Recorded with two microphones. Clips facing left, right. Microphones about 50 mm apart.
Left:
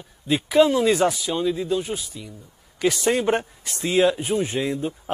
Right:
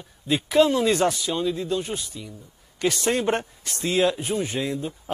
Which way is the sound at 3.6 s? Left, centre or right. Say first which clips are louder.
Left 3 dB; centre.